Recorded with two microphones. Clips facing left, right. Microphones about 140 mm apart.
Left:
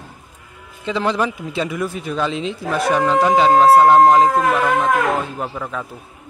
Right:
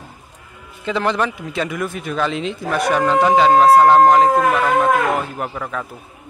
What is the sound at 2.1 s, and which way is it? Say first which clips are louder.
A man's voice: right 2 dB; centre (ahead or behind).